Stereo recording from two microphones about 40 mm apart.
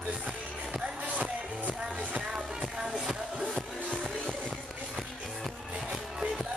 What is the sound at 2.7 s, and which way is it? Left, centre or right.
Music, centre.